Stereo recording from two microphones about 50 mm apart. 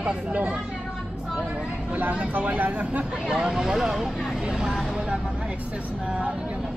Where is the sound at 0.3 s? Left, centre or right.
Right.